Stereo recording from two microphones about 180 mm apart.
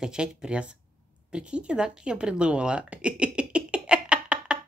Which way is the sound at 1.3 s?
5° right (ahead or behind).